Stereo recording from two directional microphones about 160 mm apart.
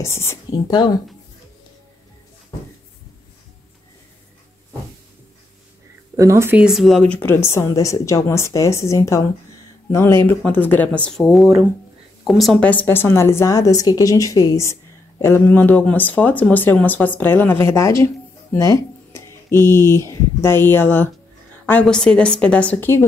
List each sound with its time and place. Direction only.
0.0 s a woman's voice: 15° left (ahead or behind)
6.1 s a woman's voice: 20° right (ahead or behind); by 23.0 s 15° left (ahead or behind)